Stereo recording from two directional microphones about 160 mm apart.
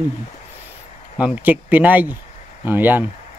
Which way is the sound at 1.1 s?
10° right (ahead or behind).